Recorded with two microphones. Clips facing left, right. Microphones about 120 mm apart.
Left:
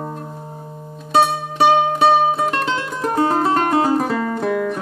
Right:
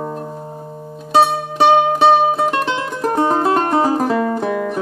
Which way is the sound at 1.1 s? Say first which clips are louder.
Right 2 dB; centre (ahead or behind).